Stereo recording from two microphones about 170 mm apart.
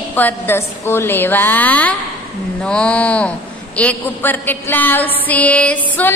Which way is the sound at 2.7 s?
5° left (ahead or behind).